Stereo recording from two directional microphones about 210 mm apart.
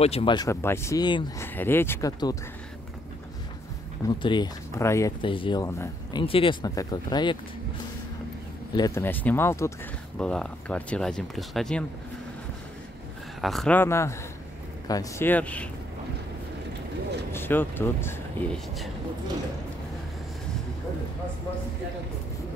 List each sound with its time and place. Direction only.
0.0 s speech: 25° left (ahead or behind)
4.2 s speech: 20° left (ahead or behind)
6.2 s speech: 25° left (ahead or behind)
8.7 s speech: 15° left (ahead or behind)
13.4 s speech: centre (ahead or behind)
17.3 s speech: 10° left (ahead or behind)